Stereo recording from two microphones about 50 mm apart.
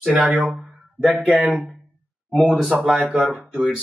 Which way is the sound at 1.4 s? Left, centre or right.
Centre.